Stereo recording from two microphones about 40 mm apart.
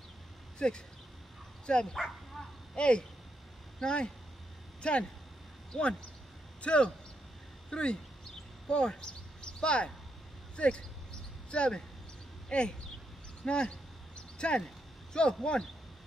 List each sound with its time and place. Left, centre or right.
0.6 s speech: left
2.0 s dog: centre
3.8 s speech: left
13.5 s a sound: left
15.4 s speech: left